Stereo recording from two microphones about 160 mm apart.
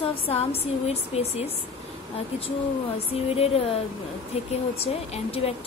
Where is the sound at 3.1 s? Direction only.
40° left (ahead or behind).